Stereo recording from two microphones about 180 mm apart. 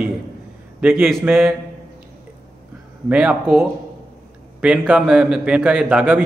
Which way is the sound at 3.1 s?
5° right (ahead or behind).